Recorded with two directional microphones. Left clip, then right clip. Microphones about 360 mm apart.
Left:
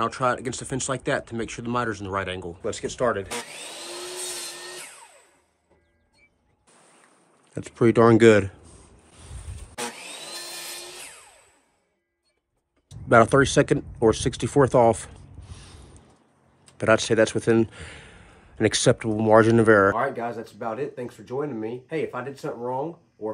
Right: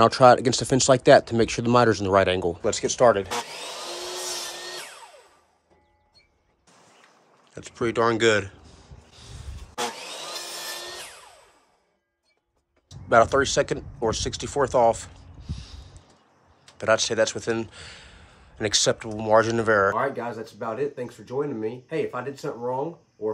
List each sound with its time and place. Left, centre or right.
0.0 s speech: centre
7.5 s a sound: centre
12.9 s speech: left
20.0 s speech: centre